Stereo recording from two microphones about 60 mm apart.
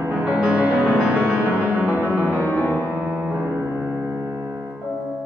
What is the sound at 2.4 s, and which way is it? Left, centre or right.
Music, left.